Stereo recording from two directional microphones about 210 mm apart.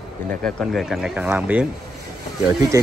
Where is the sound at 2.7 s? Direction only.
15° right (ahead or behind).